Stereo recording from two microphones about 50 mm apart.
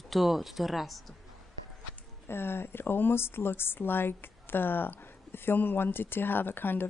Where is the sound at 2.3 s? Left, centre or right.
Left.